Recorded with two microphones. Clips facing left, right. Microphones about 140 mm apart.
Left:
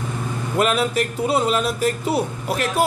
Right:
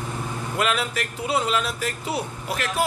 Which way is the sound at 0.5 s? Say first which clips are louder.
Left 6 dB; 40° left (ahead or behind).